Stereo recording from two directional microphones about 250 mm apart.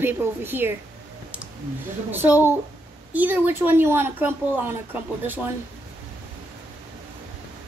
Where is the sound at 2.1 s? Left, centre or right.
Centre.